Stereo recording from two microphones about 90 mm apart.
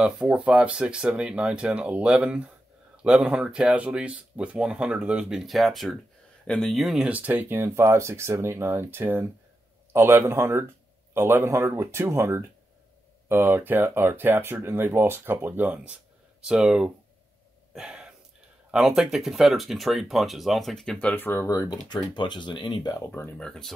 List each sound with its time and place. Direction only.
0.0 s speech: 10° right (ahead or behind)
7.1 s speech: 20° right (ahead or behind)
17.7 s gasp: 10° right (ahead or behind)
18.7 s speech: 5° right (ahead or behind)
21.1 s speech: 25° left (ahead or behind)
21.5 s speech: 45° left (ahead or behind)
23.3 s speech: 5° left (ahead or behind)